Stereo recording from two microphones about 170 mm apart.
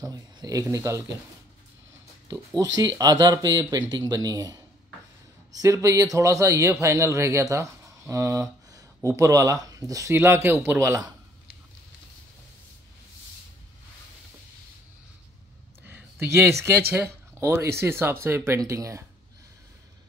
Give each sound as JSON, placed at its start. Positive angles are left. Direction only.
{"t": 0.0, "sound": "speech", "side_deg": -20}
{"t": 2.2, "sound": "speech", "side_deg": -20}
{"t": 15.8, "sound": "a sound", "side_deg": -10}
{"t": 16.9, "sound": "speech", "side_deg": -15}